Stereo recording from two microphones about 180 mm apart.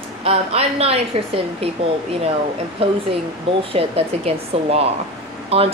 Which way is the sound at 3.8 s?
35° right (ahead or behind).